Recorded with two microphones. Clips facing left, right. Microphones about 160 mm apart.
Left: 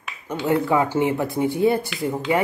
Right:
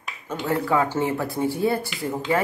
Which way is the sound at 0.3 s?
20° left (ahead or behind).